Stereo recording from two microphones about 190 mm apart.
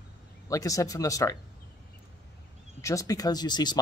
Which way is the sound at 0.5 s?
20° left (ahead or behind).